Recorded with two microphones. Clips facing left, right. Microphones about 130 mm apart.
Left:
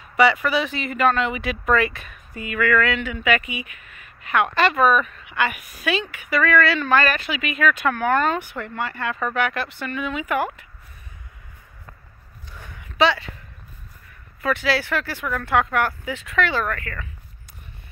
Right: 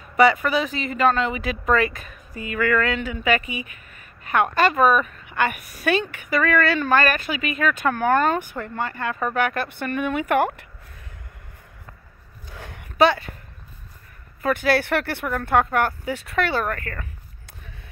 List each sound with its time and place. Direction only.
0.2 s speech: 40° right (ahead or behind); by 10.6 s 60° right (ahead or behind)
12.5 s a sound: 80° right; by 13.3 s 50° right (ahead or behind)
14.4 s speech: 50° right (ahead or behind)
15.5 s speech: 40° right (ahead or behind)